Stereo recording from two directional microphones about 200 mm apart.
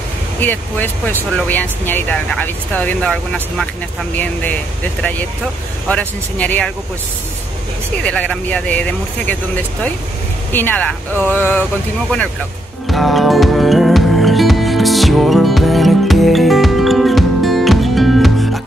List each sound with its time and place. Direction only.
0.4 s speech: 10° left (ahead or behind)
5.9 s speech: 5° left (ahead or behind)
8.0 s speech: 5° left (ahead or behind)
10.5 s speech: 10° left (ahead or behind)
12.8 s music: centre (ahead or behind)